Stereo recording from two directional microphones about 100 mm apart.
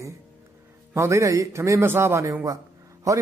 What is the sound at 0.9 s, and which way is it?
A man's voice, 30° right (ahead or behind).